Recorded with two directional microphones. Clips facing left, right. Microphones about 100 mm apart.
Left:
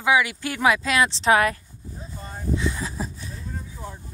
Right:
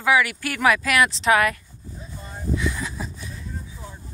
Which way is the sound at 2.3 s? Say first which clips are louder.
Even; 30° left (ahead or behind).